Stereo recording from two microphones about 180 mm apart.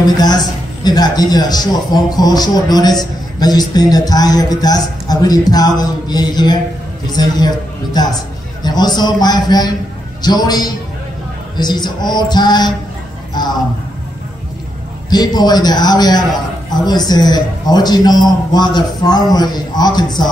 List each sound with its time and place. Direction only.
0.0 s a man's voice: 25° left (ahead or behind)
15.0 s a man's voice: 20° left (ahead or behind)